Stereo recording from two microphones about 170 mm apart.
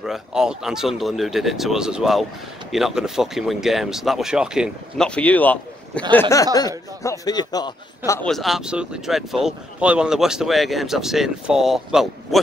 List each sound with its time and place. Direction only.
0.0 s speech: 5° right (ahead or behind)
6.3 s a man's voice: 20° left (ahead or behind)
8.3 s speech: centre (ahead or behind)